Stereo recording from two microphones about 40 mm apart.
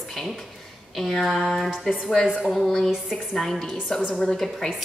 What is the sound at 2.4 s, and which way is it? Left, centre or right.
A woman's voice, centre.